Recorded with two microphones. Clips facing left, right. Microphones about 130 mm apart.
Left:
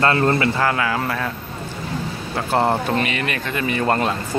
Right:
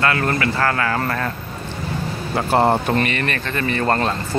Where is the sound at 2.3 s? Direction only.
5° right (ahead or behind).